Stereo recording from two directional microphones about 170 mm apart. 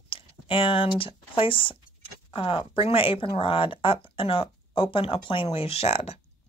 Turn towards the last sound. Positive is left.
turn(degrees=35)  # may be behind; listen again after turning